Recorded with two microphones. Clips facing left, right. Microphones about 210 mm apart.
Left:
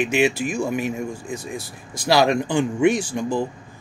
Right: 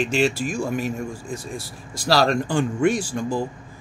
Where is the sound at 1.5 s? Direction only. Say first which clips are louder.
Left 1 dB; 20° left (ahead or behind).